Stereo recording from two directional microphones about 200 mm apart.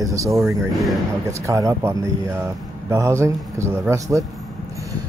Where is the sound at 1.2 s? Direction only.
15° right (ahead or behind).